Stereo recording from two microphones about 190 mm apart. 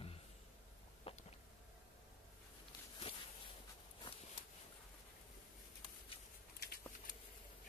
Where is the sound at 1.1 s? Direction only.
30° left (ahead or behind).